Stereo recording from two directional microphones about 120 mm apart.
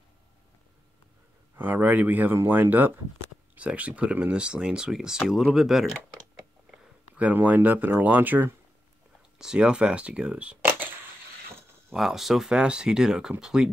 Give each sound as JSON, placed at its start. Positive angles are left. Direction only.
{"t": 1.6, "sound": "speech", "side_deg": -15}
{"t": 7.2, "sound": "speech", "side_deg": -10}
{"t": 11.9, "sound": "speech", "side_deg": 0}